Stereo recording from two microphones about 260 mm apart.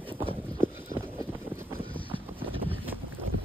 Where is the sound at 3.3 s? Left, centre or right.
Right.